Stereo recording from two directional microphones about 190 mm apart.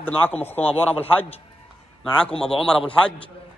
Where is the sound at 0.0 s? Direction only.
10° left (ahead or behind).